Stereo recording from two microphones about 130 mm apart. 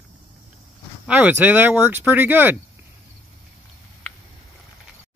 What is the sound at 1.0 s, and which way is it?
Speech, 15° right (ahead or behind).